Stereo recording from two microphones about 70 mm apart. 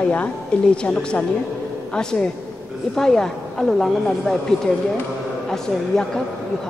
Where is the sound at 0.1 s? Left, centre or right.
Centre.